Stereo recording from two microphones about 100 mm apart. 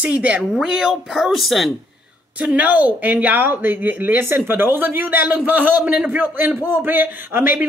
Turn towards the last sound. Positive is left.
turn(degrees=-20)  # may be behind; listen again after turning